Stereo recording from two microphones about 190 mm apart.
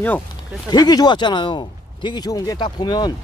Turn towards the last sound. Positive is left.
turn(degrees=25)  # may be behind; listen again after turning